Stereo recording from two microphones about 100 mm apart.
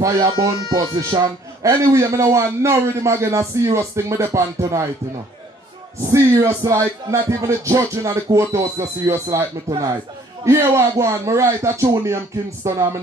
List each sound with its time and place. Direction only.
0.2 s a man's voice: 40° right (ahead or behind)
6.0 s speech: 25° right (ahead or behind)
10.4 s a man's voice: 30° right (ahead or behind)